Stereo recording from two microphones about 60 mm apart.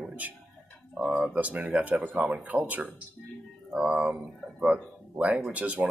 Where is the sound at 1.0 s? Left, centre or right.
Centre.